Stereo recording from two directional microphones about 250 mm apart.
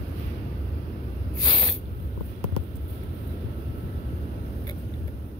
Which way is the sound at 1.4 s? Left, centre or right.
Centre.